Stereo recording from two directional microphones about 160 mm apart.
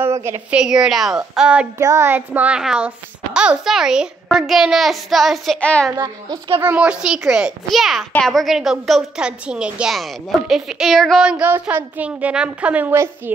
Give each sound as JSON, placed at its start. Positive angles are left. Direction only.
{"t": 0.0, "sound": "a woman's voice", "side_deg": -15}
{"t": 0.6, "sound": "a child's voice", "side_deg": -5}
{"t": 1.8, "sound": "child singing", "side_deg": -20}
{"t": 3.3, "sound": "a child's voice", "side_deg": -5}
{"t": 5.9, "sound": "a child's voice", "side_deg": -30}
{"t": 6.6, "sound": "a child's voice", "side_deg": -10}
{"t": 10.5, "sound": "child singing", "side_deg": 0}